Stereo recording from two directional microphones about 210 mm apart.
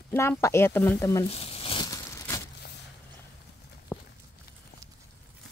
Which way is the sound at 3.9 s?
10° left (ahead or behind).